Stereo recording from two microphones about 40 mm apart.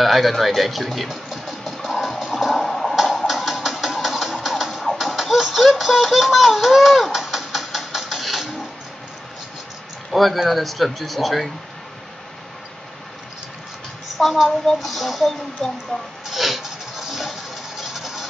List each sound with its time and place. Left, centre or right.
0.0 s speech: centre
1.6 s music: centre
2.5 s a sound: centre
3.3 s a sound: centre
4.9 s baby laughter: centre
10.1 s speech: centre
14.1 s a child's voice: centre
15.9 s speech: left
16.3 s a sound: centre